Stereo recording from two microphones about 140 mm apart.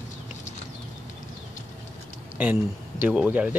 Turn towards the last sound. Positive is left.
turn(degrees=-10)  # may be behind; listen again after turning